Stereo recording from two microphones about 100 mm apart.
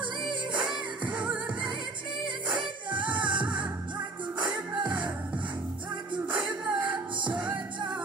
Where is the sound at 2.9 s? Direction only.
55° right (ahead or behind).